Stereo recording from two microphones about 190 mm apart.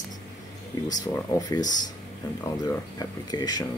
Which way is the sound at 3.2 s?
20° left (ahead or behind).